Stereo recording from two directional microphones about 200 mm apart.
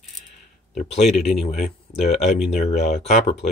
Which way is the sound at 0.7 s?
30° left (ahead or behind).